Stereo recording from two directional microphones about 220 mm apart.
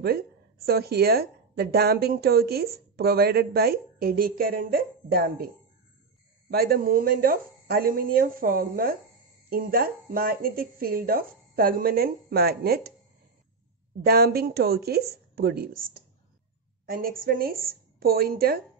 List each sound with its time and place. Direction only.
0.7 s a woman's voice: 45° right (ahead or behind)
6.5 s speech: 45° right (ahead or behind)
14.0 s a woman's voice: 45° right (ahead or behind)
16.9 s a woman's voice: 40° right (ahead or behind)